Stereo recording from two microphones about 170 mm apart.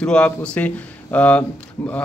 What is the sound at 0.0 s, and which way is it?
A man's voice, 5° left (ahead or behind).